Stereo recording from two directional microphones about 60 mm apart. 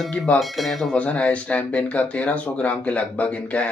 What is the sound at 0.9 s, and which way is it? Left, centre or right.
A man's voice, left.